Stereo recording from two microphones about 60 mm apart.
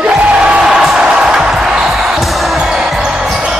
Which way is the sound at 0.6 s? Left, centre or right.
Centre.